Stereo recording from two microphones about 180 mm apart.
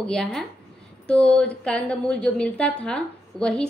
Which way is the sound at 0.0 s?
5° left (ahead or behind).